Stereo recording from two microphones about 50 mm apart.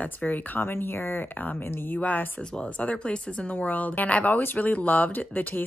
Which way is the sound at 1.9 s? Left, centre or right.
Left.